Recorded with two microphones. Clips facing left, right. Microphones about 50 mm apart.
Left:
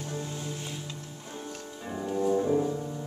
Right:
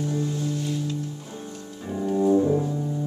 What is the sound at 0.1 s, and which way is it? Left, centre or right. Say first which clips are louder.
Music: right 9 dB; centre.